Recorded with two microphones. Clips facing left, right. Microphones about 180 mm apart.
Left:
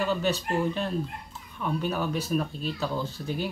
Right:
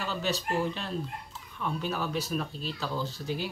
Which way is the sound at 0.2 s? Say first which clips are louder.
Left 3 dB; 55° left (ahead or behind).